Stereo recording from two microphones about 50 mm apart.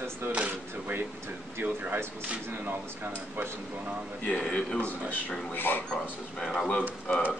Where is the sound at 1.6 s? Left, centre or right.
Right.